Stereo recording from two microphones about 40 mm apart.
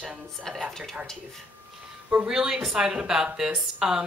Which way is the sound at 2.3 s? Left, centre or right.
Centre.